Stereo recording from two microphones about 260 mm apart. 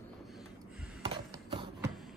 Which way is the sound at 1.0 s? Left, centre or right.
Centre.